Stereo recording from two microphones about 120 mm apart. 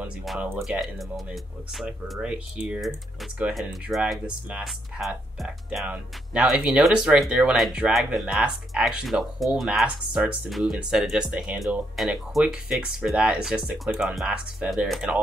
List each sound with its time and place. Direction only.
0.5 s speech: centre (ahead or behind)